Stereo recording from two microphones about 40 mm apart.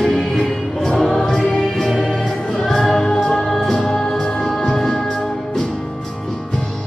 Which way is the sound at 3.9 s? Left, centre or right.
Centre.